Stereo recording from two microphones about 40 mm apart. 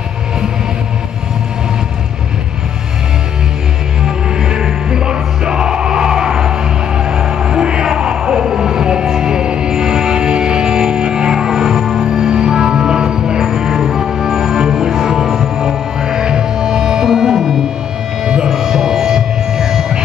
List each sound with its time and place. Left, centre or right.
4.0 s music: centre